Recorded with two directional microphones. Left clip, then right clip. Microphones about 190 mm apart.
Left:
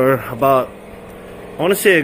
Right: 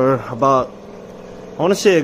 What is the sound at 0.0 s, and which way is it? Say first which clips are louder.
A man's voice: left 1 dB; 10° right (ahead or behind).